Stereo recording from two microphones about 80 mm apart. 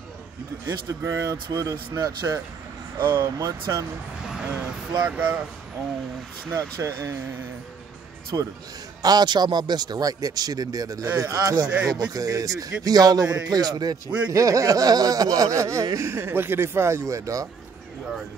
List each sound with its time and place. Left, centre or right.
0.7 s a man's voice: right
5.0 s speech: centre
6.5 s speech: right
8.3 s a man's voice: right
9.0 s a man's voice: right
14.3 s a man's voice: right
16.1 s speech: right